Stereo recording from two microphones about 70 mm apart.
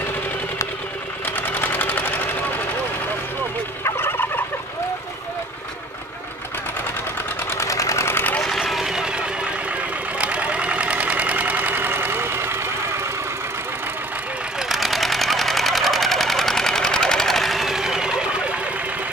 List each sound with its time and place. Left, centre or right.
1.2 s sewing machine: left
3.8 s turkey: left
7.4 s sewing machine: left
8.5 s vehicle: centre
10.1 s engine: centre; by 12.7 s right
14.6 s sewing machine: centre